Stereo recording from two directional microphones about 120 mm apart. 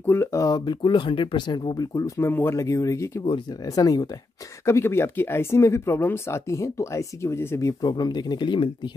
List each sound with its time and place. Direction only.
0.0 s speech: 20° left (ahead or behind); by 8.6 s 40° left (ahead or behind)